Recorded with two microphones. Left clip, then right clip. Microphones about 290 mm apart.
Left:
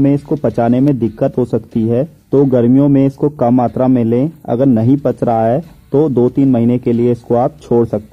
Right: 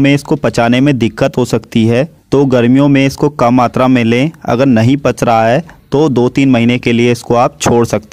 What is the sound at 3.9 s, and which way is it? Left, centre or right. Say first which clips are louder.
Speech: right 3 dB; right.